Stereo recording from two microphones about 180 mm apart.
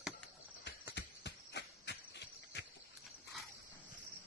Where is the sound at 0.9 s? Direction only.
75° left (ahead or behind).